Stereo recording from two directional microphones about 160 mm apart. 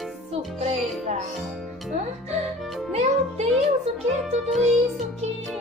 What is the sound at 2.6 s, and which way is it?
Music, centre (ahead or behind).